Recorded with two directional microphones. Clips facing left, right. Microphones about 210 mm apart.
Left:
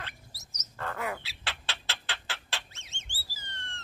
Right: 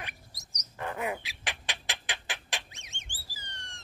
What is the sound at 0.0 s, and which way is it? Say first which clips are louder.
Bird: right 1 dB; 15° right (ahead or behind).